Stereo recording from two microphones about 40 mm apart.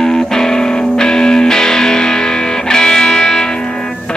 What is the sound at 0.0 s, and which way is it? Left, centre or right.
Music, centre.